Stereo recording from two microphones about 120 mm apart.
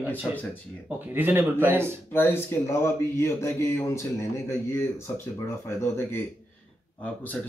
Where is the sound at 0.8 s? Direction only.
15° right (ahead or behind).